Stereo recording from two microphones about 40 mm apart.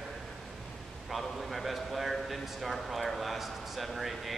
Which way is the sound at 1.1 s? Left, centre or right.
Centre.